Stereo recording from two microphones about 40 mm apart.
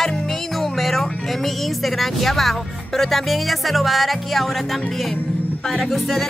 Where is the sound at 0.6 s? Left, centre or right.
Centre.